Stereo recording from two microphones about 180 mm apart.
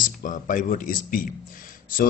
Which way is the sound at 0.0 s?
45° left (ahead or behind).